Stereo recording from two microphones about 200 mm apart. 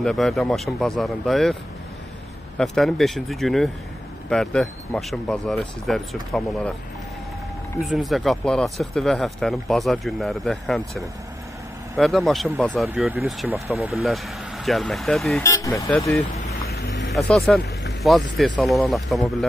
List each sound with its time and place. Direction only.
0.0 s speech: centre (ahead or behind)
7.8 s speech: centre (ahead or behind)
12.0 s speech: centre (ahead or behind)
15.4 s speech: 15° left (ahead or behind)
16.6 s vehicle: 55° left (ahead or behind)
17.5 s speech: 5° left (ahead or behind)